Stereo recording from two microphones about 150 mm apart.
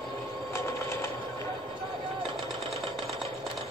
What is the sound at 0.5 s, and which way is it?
Train, 20° left (ahead or behind).